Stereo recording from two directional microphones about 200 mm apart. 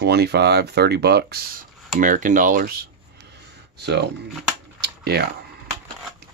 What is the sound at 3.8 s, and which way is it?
Speech, 55° right (ahead or behind).